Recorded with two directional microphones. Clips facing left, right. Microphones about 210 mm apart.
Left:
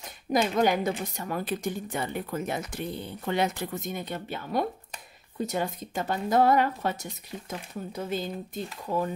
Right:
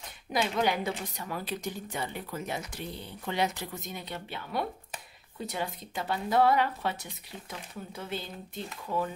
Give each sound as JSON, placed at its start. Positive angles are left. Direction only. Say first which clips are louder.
{"t": 0.3, "sound": "a woman's voice", "louder": "left 5 dB", "side_deg": 45}